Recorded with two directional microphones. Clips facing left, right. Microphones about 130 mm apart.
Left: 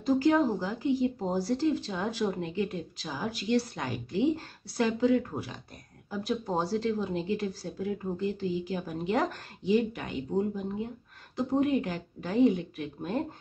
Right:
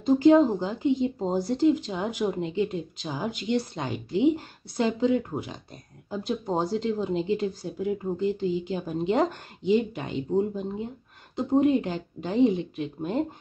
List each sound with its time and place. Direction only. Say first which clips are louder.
0.0 s a woman's voice: right 6 dB; 20° right (ahead or behind)